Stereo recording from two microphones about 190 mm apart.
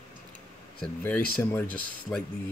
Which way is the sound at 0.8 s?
10° left (ahead or behind).